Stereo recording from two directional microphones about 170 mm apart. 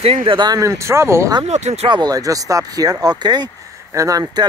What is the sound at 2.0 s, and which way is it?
Speech, 20° right (ahead or behind).